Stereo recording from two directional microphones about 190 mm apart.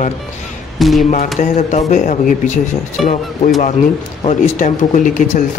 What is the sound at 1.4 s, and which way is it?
Speech, 40° left (ahead or behind).